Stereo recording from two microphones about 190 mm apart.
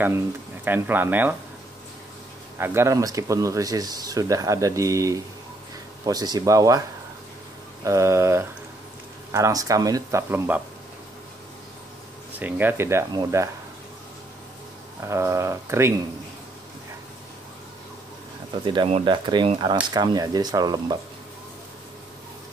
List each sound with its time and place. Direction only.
0.7 s speech: 10° right (ahead or behind)
2.6 s speech: 15° right (ahead or behind)
7.8 s speech: 15° right (ahead or behind)
12.3 s speech: 10° right (ahead or behind)
15.0 s speech: 15° right (ahead or behind)
18.7 s speech: 30° right (ahead or behind)